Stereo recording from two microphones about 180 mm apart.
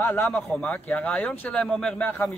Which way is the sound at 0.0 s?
10° left (ahead or behind).